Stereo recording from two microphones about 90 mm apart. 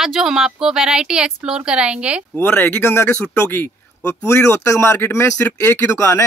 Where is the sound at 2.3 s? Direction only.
25° left (ahead or behind).